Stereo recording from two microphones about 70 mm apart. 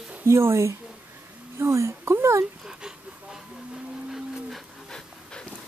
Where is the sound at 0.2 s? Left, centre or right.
Right.